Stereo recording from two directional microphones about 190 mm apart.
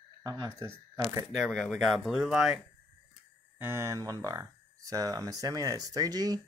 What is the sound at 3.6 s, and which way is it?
Speech, 15° right (ahead or behind).